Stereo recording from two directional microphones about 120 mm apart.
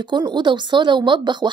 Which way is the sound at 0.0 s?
40° right (ahead or behind).